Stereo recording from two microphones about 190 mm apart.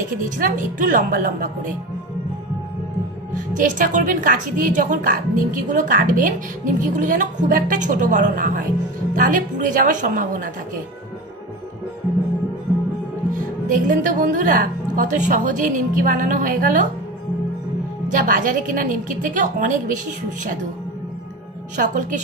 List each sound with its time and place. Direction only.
0.0 s a woman's voice: 45° right (ahead or behind)
3.3 s a woman's voice: 45° right (ahead or behind)
13.7 s a woman's voice: 45° right (ahead or behind)
18.0 s a woman's voice: 45° right (ahead or behind)
21.7 s a woman's voice: 40° right (ahead or behind)